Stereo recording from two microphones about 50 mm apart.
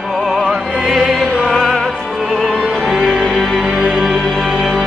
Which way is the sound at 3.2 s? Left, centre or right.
Centre.